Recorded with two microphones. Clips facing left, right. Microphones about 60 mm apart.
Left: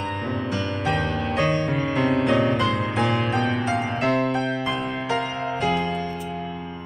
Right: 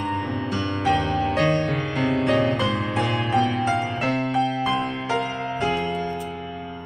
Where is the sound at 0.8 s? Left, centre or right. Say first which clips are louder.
Right 5 dB; centre.